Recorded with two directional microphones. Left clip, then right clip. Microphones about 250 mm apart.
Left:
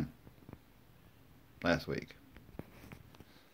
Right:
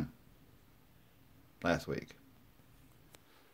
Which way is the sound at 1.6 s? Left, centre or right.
Centre.